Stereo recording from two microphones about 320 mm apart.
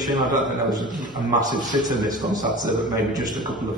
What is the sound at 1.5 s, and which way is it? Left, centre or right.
A man's voice, centre.